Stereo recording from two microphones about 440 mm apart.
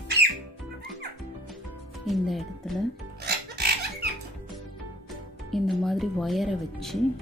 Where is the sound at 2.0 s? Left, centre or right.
Centre.